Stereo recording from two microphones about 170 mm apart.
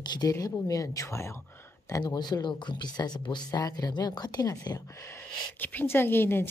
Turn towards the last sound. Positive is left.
turn(degrees=15)  # may be behind; listen again after turning